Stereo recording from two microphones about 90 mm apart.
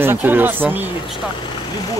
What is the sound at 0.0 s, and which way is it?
Speech, 25° right (ahead or behind).